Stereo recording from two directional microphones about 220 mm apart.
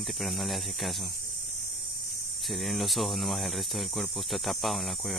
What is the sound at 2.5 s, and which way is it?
Speech, centre (ahead or behind).